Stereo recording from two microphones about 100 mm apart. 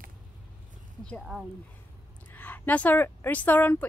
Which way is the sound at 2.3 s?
20° left (ahead or behind).